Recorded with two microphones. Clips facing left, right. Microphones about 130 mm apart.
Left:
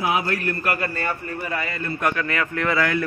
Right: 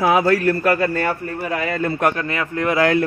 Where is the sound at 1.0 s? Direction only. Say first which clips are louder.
Right 5 dB; 65° right (ahead or behind); by 1.9 s 85° right.